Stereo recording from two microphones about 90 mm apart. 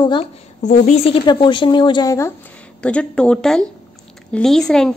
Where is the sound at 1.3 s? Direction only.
65° left (ahead or behind).